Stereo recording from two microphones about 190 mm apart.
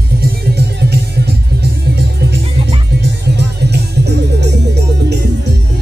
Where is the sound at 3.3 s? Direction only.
60° right (ahead or behind).